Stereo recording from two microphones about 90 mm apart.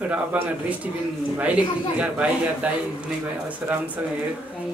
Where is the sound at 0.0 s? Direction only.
15° right (ahead or behind).